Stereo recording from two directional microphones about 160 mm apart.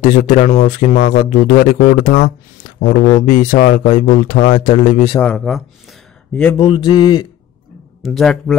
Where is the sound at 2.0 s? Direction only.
55° left (ahead or behind).